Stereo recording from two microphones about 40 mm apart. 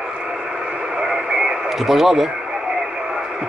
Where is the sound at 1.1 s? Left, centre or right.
Centre.